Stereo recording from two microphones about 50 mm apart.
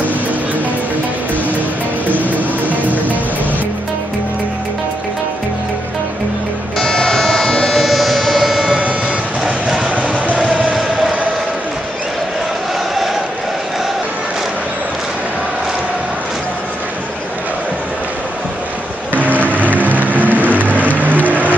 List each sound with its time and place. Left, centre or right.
6.8 s music: centre
9.9 s music: right
10.7 s music: centre
19.4 s vehicle: right